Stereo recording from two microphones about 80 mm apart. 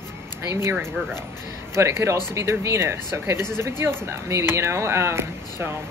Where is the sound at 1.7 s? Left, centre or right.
Right.